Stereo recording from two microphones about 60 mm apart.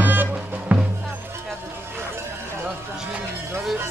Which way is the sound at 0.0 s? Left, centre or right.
Right.